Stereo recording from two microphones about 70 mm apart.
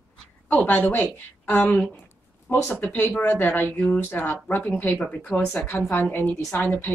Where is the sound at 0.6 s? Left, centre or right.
Left.